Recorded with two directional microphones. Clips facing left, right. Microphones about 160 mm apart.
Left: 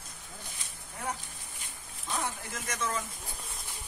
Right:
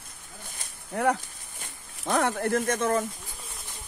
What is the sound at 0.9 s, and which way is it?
Speech, 70° right (ahead or behind).